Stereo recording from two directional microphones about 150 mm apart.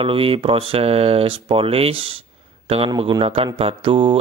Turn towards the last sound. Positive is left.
turn(degrees=-35)  # may be behind; listen again after turning